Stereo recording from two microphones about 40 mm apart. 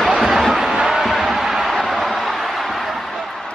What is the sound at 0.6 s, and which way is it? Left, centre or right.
Music, centre.